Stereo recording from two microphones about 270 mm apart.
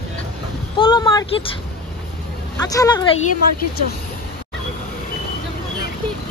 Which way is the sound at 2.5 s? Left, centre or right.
Centre.